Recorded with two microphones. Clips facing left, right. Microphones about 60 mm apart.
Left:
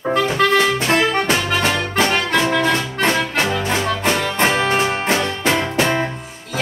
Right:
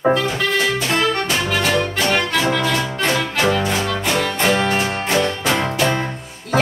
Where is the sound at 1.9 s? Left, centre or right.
Left.